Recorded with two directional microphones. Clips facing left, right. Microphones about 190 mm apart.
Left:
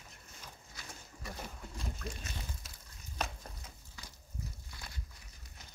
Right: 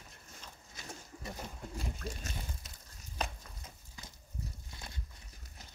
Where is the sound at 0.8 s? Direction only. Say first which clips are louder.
Right 4 dB; 20° right (ahead or behind).